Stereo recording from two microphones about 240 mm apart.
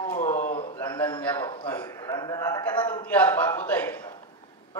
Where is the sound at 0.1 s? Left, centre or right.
Left.